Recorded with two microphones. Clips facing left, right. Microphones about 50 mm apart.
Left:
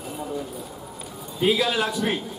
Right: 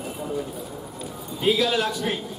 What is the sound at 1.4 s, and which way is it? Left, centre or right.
Speech, centre.